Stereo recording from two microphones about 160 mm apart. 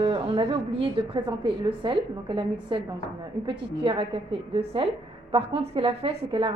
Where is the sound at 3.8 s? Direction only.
35° right (ahead or behind).